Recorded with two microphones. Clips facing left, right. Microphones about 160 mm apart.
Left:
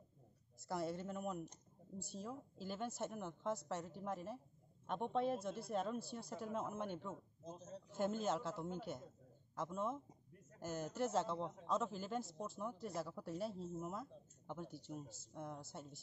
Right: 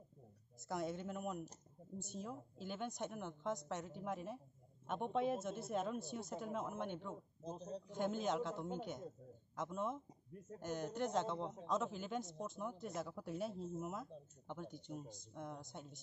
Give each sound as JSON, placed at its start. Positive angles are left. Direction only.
{"t": 0.7, "sound": "speech", "side_deg": 0}
{"t": 7.4, "sound": "a man's voice", "side_deg": -30}
{"t": 7.9, "sound": "speech", "side_deg": 5}